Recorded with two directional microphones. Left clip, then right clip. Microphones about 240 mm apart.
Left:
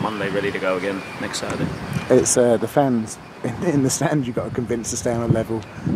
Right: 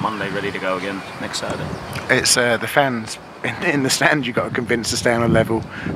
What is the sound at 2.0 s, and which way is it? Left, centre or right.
Speech, right.